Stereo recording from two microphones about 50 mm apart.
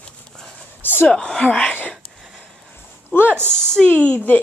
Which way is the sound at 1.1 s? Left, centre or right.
Centre.